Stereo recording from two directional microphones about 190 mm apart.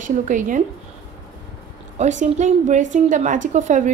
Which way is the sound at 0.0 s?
40° right (ahead or behind).